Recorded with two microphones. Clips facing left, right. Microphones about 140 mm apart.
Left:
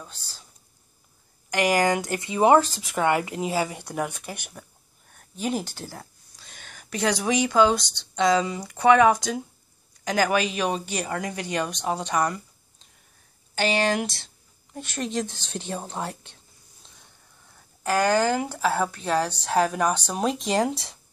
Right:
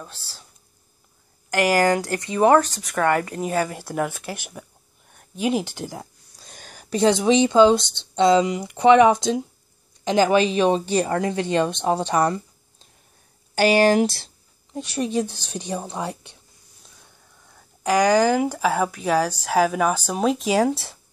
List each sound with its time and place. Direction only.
1.5 s speech: 5° right (ahead or behind)
2.3 s speech: 10° left (ahead or behind); by 6.0 s 15° right (ahead or behind)
6.4 s speech: 40° right (ahead or behind)
13.6 s speech: 40° right (ahead or behind)
14.7 s speech: 15° right (ahead or behind)
17.8 s speech: 15° right (ahead or behind)